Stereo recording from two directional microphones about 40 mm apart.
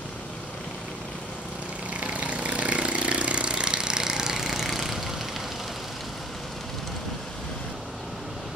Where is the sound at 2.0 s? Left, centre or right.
Right; by 5.1 s centre.